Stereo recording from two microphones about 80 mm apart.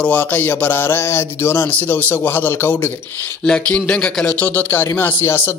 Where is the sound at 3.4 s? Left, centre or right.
Centre.